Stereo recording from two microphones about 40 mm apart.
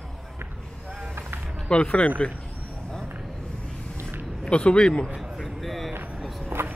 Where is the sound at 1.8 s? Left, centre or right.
Left.